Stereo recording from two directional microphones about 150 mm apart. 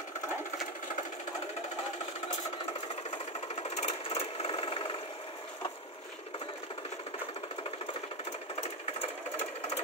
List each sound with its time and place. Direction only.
3.3 s sewing machine: 45° left (ahead or behind)
8.5 s sewing machine: 45° left (ahead or behind)